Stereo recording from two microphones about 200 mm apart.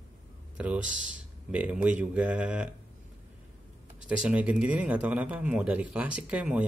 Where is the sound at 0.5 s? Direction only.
5° right (ahead or behind).